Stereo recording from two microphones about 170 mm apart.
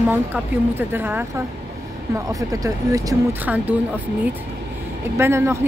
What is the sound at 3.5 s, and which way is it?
Speech, 5° right (ahead or behind).